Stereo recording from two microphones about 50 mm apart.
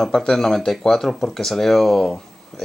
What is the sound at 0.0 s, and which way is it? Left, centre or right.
Speech, centre.